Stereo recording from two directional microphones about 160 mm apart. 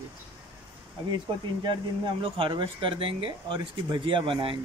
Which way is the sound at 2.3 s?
30° right (ahead or behind).